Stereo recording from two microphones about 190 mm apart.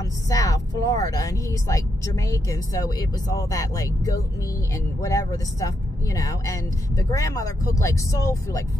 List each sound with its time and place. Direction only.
0.0 s a woman's voice: 20° left (ahead or behind)